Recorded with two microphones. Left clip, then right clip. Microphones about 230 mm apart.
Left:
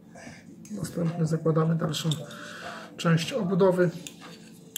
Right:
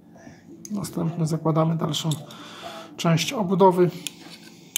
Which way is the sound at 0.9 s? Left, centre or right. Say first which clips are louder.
Even; right.